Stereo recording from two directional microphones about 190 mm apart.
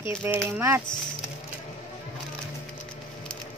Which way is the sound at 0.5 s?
10° right (ahead or behind).